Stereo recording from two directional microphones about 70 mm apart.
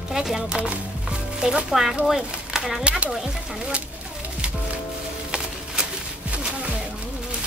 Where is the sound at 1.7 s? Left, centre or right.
Centre.